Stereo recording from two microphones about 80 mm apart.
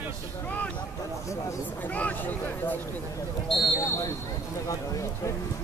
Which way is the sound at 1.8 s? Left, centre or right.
Left.